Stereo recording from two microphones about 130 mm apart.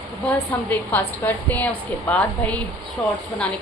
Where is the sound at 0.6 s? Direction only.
10° left (ahead or behind).